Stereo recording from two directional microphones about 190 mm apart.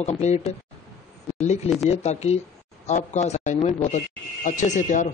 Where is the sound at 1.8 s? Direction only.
35° left (ahead or behind).